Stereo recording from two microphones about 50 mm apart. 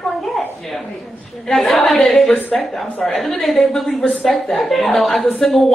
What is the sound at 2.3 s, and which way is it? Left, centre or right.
Speech, left.